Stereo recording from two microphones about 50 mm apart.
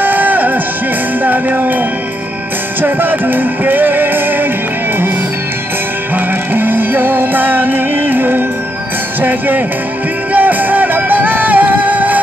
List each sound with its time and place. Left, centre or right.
0.0 s music: right
2.8 s music: right
6.1 s music: right
10.3 s music: right